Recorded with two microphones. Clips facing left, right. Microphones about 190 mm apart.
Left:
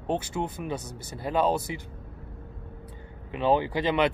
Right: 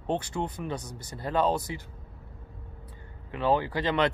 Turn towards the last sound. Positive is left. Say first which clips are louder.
# left 2 dB
turn(degrees=10)  # may be behind; listen again after turning